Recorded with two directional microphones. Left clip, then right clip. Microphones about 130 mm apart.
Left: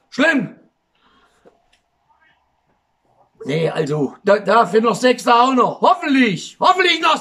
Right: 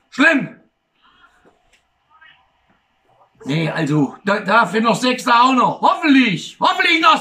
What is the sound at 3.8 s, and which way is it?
Speech, 40° left (ahead or behind).